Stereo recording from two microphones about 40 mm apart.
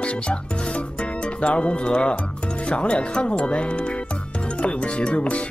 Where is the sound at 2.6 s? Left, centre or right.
Left.